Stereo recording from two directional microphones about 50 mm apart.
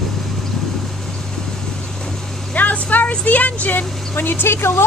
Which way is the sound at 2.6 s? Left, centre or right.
Left.